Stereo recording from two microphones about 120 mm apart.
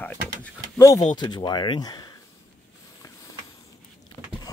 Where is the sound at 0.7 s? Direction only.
25° left (ahead or behind).